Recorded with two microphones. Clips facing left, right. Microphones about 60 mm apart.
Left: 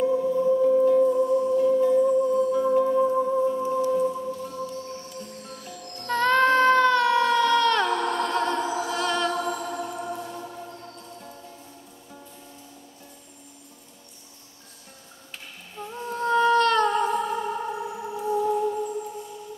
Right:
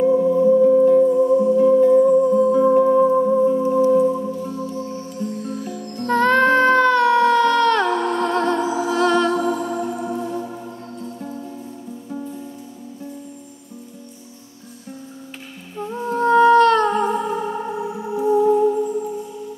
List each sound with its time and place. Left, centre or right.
0.0 s music: right
1.6 s music: right
5.5 s music: centre
7.9 s music: centre
8.5 s music: centre
8.9 s music: right
9.3 s music: centre
15.7 s humming: centre